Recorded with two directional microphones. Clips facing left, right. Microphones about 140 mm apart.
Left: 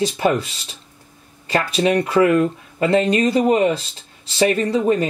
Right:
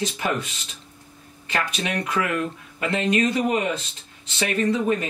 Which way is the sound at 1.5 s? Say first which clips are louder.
Left 9 dB; 30° left (ahead or behind).